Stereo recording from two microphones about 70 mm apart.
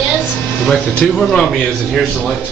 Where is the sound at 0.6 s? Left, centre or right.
Centre.